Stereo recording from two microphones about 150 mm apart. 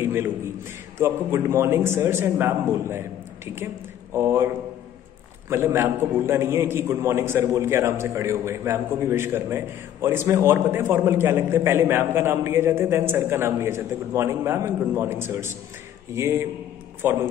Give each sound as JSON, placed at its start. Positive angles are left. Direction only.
{"t": 0.0, "sound": "a sound", "side_deg": -15}
{"t": 0.9, "sound": "a man's voice", "side_deg": -20}
{"t": 5.5, "sound": "a man's voice", "side_deg": -15}